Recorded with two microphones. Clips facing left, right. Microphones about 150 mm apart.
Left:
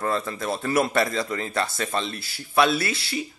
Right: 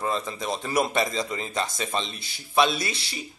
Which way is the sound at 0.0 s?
15° right (ahead or behind).